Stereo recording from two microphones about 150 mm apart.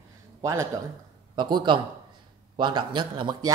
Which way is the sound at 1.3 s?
30° right (ahead or behind).